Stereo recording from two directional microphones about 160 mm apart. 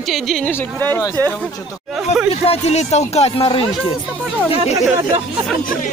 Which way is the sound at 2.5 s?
40° left (ahead or behind).